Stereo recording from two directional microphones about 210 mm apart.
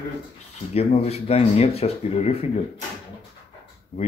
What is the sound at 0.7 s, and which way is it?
Speech, 30° left (ahead or behind).